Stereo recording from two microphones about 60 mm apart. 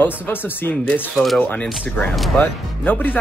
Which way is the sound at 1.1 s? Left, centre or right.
Centre.